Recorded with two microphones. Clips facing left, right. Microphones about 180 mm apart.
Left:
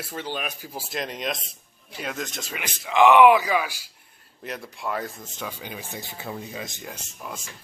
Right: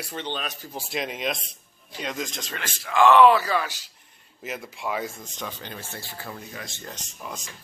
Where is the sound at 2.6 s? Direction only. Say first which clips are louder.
Left 1 dB; 20° left (ahead or behind).